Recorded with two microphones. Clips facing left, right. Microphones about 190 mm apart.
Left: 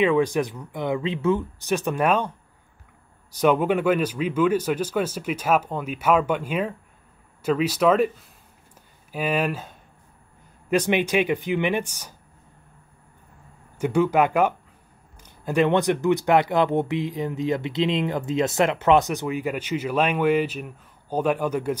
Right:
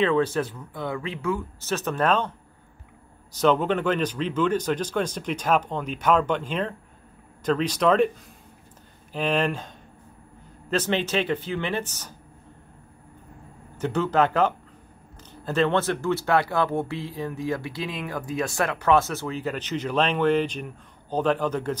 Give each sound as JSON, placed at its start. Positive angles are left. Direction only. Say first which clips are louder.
{"t": 0.0, "sound": "speech", "louder": "left 2 dB", "side_deg": 15}
{"t": 3.3, "sound": "speech", "louder": "left 1 dB", "side_deg": 10}
{"t": 9.1, "sound": "speech", "louder": "even", "side_deg": 10}
{"t": 13.7, "sound": "speech", "louder": "left 3 dB", "side_deg": 10}